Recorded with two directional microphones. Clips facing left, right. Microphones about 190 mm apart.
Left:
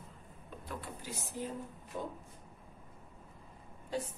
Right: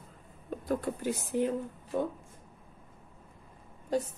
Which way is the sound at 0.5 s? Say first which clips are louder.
Right 13 dB; 45° right (ahead or behind).